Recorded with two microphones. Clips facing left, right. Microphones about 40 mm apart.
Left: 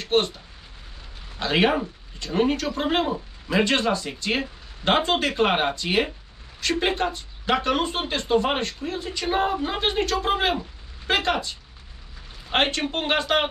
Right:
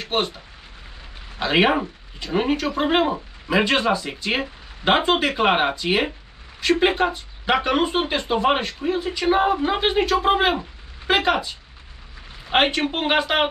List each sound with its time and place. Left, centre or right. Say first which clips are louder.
0.0 s speech: left 2 dB; centre
1.4 s a man's voice: right 3 dB; centre